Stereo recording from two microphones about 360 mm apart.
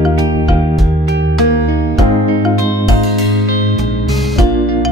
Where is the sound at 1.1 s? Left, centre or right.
Right.